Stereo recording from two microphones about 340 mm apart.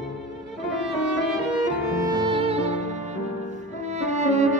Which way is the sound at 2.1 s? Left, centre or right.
Centre.